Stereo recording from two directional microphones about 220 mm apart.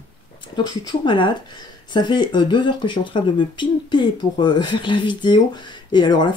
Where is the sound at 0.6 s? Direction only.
20° left (ahead or behind).